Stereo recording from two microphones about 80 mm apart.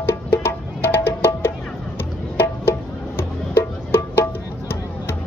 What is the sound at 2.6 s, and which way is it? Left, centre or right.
Music, left.